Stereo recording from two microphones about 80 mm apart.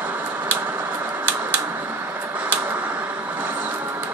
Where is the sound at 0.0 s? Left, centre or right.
Right.